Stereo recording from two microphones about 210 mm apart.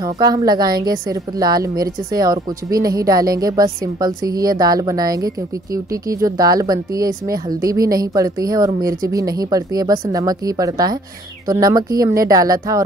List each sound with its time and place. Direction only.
0.0 s a woman's voice: 15° right (ahead or behind)